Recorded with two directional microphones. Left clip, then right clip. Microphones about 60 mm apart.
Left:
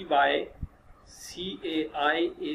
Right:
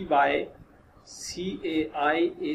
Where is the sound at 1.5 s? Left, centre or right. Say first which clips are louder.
Right 2 dB; centre.